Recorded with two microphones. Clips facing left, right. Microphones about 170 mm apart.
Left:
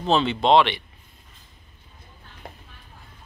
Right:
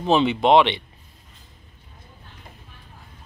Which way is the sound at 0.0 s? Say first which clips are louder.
Right 2 dB; 15° right (ahead or behind).